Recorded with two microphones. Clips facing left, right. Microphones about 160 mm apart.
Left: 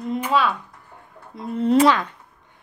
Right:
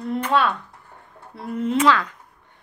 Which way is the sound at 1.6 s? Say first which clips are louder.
Left 5 dB; 35° left (ahead or behind).